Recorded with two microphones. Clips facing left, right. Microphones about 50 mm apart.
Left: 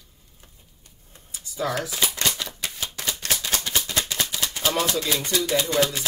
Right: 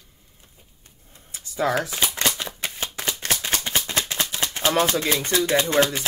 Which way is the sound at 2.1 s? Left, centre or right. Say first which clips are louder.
Right 2 dB; right.